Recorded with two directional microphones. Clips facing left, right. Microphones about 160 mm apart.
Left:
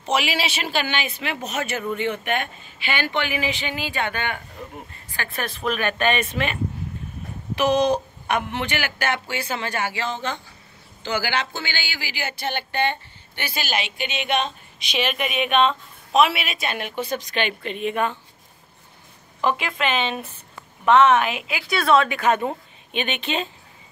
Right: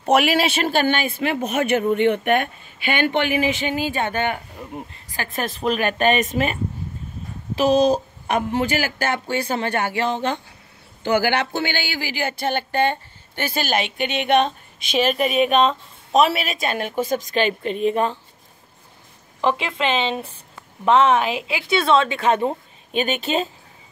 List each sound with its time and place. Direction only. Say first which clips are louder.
0.0 s speech: right 6 dB; 55° right (ahead or behind)
5.3 s speech: right 4 dB; 40° right (ahead or behind)
8.3 s speech: right 4 dB; 40° right (ahead or behind)
19.4 s a woman's voice: right 2 dB; 25° right (ahead or behind)